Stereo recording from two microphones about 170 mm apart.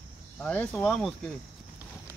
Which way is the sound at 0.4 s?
10° left (ahead or behind).